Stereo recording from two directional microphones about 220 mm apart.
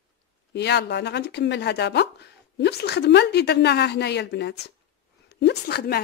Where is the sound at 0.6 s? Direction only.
50° left (ahead or behind).